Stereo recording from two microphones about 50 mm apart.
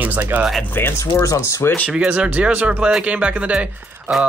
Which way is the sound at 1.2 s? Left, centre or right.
Left.